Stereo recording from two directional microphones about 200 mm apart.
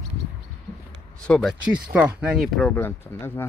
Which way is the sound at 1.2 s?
5° left (ahead or behind).